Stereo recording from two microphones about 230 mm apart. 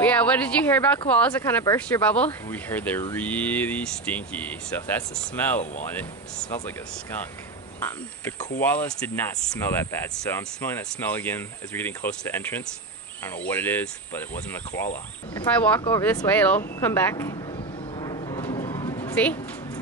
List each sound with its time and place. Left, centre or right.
0.0 s speech: centre
8.5 s speech: centre
17.9 s a sound: centre